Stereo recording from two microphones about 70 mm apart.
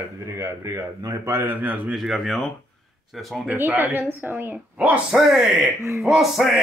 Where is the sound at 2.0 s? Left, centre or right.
Centre.